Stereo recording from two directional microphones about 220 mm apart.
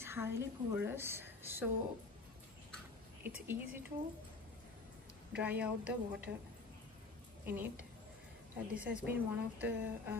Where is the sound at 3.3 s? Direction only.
10° right (ahead or behind).